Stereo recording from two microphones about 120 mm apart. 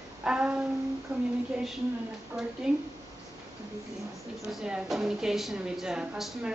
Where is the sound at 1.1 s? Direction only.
10° right (ahead or behind).